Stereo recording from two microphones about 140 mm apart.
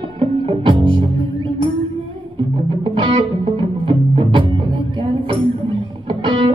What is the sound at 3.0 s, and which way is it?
Music, 35° right (ahead or behind).